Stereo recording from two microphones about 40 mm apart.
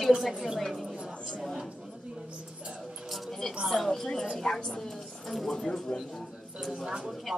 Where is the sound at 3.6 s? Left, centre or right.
Centre.